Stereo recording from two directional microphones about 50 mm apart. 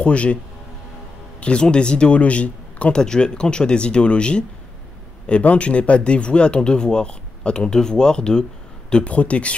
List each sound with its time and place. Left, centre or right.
0.0 s speech: left
1.4 s speech: centre
3.0 s speech: centre